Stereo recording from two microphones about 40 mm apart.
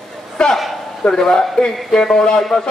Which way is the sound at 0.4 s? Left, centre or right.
Left.